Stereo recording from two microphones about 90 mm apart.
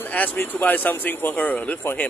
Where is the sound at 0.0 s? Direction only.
20° left (ahead or behind).